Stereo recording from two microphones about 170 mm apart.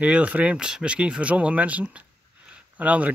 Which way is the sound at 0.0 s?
10° right (ahead or behind).